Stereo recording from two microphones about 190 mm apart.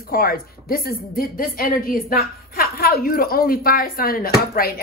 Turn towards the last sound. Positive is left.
turn(degrees=50)  # may be behind; listen again after turning